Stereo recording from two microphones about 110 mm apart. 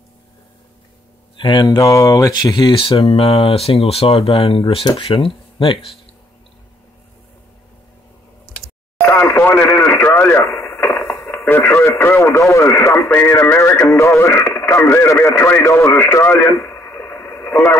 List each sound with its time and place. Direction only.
1.4 s speech: 40° left (ahead or behind)
2.8 s speech: 60° left (ahead or behind)
9.0 s radio: 20° left (ahead or behind)
10.5 s chop: 25° left (ahead or behind)
11.1 s radio: 20° left (ahead or behind)